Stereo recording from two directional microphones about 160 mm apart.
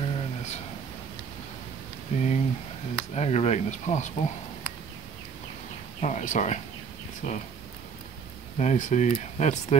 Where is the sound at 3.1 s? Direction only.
45° left (ahead or behind).